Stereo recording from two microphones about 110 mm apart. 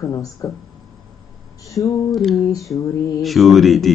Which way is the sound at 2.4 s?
30° left (ahead or behind).